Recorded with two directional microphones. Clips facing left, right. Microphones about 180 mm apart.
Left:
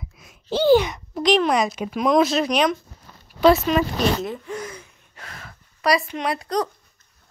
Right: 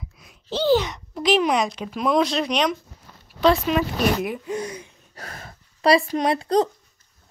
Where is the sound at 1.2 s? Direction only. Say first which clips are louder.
Left 1 dB; 5° right (ahead or behind).